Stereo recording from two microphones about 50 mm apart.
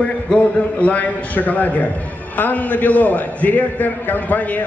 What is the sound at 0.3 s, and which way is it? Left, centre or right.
A man's voice, left.